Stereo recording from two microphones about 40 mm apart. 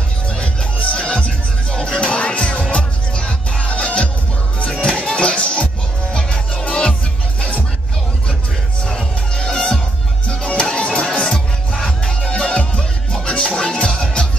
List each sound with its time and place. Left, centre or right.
0.3 s music: left
9.3 s music: left